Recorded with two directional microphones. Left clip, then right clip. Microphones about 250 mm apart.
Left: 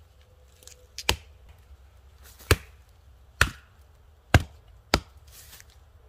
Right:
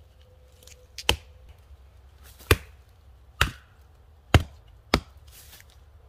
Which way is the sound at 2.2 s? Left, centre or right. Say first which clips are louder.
Right 2 dB; centre.